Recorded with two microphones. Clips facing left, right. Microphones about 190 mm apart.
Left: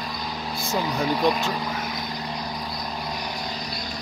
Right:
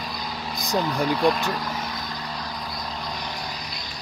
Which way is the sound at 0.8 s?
5° left (ahead or behind).